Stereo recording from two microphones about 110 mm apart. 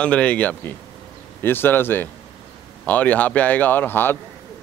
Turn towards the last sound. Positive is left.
turn(degrees=20)  # may be behind; listen again after turning